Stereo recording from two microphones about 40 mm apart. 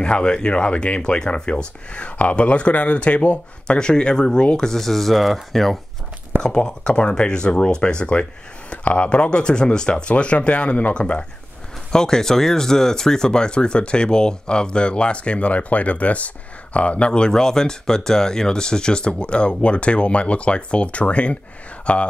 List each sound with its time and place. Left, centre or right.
0.0 s speech: left
3.6 s speech: left; by 5.8 s centre
6.4 s speech: left
10.1 s speech: left
11.9 s speech: centre